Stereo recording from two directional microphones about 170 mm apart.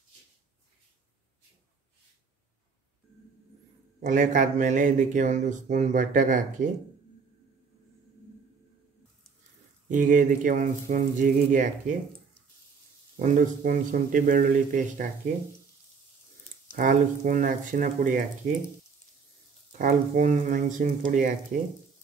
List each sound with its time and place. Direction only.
4.0 s speech: 50° right (ahead or behind)
9.8 s speech: 50° right (ahead or behind)
13.2 s speech: 50° right (ahead or behind)
16.7 s speech: 50° right (ahead or behind)
19.8 s speech: 45° right (ahead or behind)